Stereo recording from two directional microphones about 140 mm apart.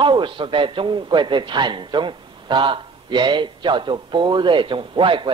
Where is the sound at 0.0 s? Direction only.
35° right (ahead or behind).